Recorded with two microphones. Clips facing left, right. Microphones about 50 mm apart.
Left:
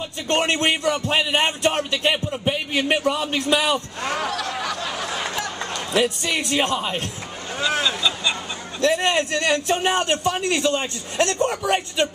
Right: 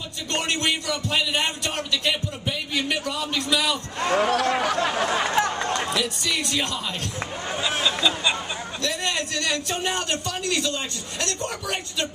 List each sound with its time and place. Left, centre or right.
0.3 s speech: left
4.1 s a sound: right
6.0 s speech: left
7.8 s speech: centre
8.8 s a man's voice: left